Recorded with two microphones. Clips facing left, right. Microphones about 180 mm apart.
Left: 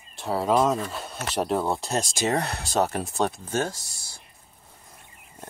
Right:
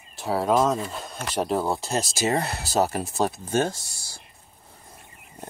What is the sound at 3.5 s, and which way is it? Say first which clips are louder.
Speech: right 3 dB; 20° right (ahead or behind).